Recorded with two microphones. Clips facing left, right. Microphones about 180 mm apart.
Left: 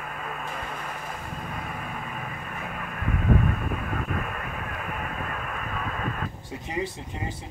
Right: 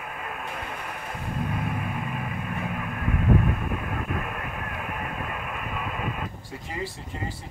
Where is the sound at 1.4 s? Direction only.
5° right (ahead or behind).